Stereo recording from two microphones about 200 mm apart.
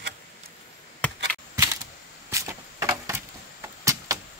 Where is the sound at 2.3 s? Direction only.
15° right (ahead or behind).